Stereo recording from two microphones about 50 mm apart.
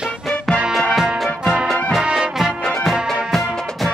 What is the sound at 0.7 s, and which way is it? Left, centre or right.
Music, centre.